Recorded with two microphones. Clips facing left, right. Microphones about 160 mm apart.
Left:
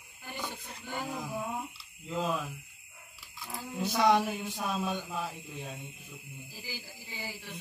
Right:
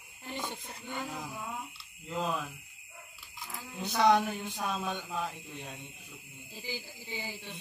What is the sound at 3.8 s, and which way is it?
Speech, 5° left (ahead or behind).